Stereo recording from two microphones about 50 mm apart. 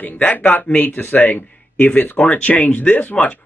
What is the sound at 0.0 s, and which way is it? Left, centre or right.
Speech, left.